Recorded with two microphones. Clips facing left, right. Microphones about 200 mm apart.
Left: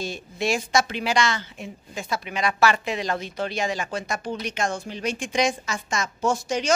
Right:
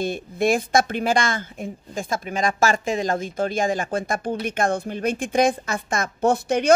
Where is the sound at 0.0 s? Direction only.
55° right (ahead or behind).